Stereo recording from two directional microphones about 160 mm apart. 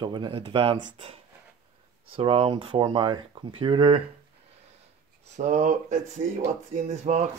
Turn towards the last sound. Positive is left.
turn(degrees=-45)  # may be behind; listen again after turning